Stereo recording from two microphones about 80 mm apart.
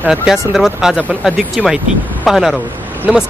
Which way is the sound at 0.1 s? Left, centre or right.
Centre.